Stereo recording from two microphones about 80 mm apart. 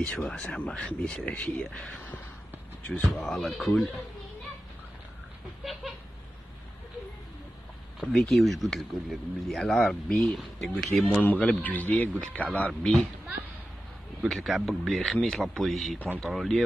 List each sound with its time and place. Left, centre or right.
0.0 s speech: centre
5.6 s a sound: centre
8.0 s speech: centre
11.2 s speech: centre
14.2 s speech: centre